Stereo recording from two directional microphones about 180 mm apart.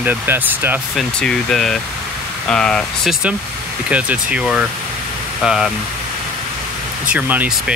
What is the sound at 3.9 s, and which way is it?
Speech, 5° right (ahead or behind).